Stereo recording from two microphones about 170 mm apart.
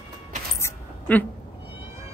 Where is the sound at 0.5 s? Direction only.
15° left (ahead or behind).